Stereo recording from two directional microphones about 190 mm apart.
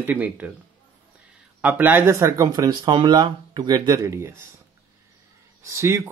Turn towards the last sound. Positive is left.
turn(degrees=-15)  # may be behind; listen again after turning